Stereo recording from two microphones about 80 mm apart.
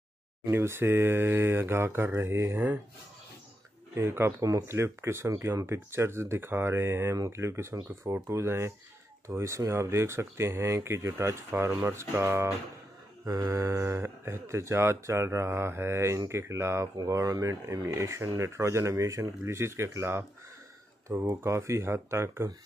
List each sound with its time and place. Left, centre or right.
0.5 s speech: right
3.9 s speech: right
16.9 s speech: right